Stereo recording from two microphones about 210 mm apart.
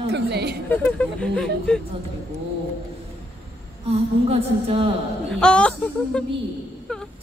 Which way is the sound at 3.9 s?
30° right (ahead or behind).